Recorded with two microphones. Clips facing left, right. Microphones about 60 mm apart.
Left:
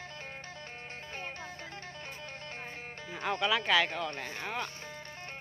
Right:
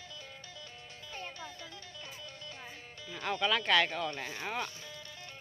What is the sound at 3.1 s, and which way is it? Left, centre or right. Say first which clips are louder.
Speech: left 1 dB; left.